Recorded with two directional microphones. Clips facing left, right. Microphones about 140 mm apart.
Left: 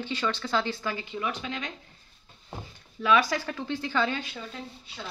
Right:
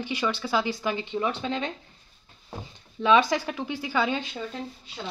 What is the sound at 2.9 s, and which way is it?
Speech, 20° right (ahead or behind).